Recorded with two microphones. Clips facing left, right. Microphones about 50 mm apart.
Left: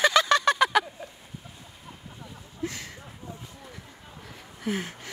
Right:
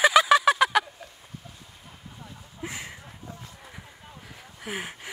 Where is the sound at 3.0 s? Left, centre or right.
Centre.